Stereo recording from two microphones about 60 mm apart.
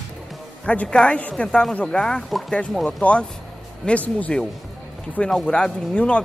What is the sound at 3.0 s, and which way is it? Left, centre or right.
Speech, left.